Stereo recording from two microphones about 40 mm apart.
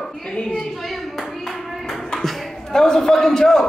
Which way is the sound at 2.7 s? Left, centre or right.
Centre.